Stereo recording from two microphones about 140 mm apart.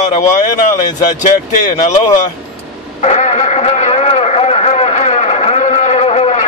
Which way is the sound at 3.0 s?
55° left (ahead or behind).